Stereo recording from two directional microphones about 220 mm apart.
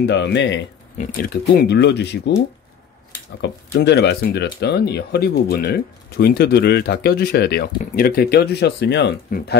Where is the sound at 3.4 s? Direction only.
50° left (ahead or behind).